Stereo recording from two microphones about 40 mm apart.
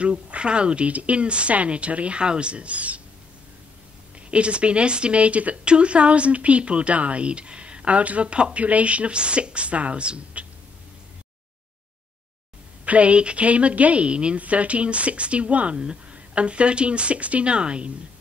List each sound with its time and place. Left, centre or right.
0.0 s speech: right
4.3 s speech: right
12.8 s a woman's voice: right